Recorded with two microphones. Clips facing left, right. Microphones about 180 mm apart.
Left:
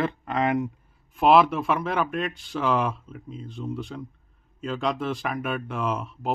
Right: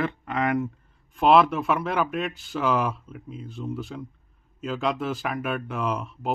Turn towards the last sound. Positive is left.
turn(degrees=0)  # may be behind; listen again after turning